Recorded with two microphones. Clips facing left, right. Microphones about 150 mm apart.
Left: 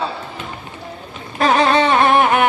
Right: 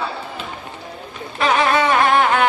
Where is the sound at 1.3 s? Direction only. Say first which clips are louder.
Left 3 dB; 35° left (ahead or behind); by 2.4 s 20° left (ahead or behind).